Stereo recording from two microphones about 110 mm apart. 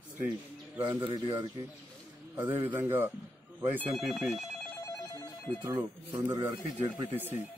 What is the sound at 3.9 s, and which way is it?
Speech, centre (ahead or behind).